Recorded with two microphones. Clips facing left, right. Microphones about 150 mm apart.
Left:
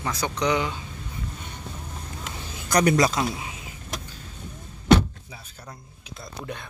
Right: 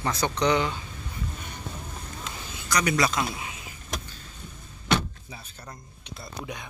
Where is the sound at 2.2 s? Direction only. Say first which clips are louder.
Left 1 dB; 55° left (ahead or behind).